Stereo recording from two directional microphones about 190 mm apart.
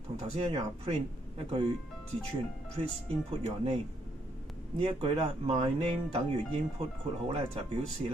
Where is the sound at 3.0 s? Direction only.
30° right (ahead or behind).